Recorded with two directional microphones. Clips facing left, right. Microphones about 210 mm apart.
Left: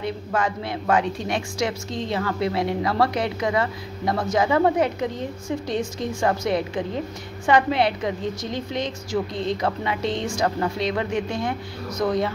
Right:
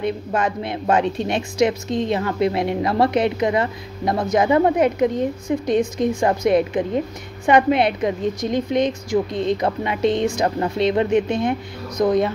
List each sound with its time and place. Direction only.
0.0 s a woman's voice: 20° right (ahead or behind)